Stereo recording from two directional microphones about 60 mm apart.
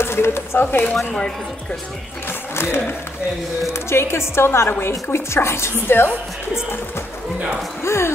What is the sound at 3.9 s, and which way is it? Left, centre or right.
A woman's voice, left.